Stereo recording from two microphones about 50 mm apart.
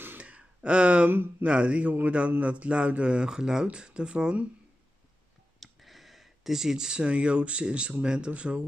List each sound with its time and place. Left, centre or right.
0.2 s a sound: right
1.0 s speech: right
1.4 s speech: right
5.6 s speech: centre; by 8.6 s right